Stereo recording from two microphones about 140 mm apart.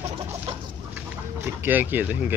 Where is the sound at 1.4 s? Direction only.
15° right (ahead or behind).